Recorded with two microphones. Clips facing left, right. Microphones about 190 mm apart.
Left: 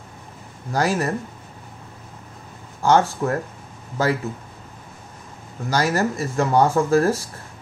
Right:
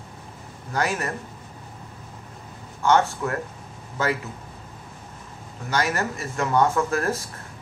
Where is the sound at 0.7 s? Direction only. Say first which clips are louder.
Left 4 dB; 35° left (ahead or behind).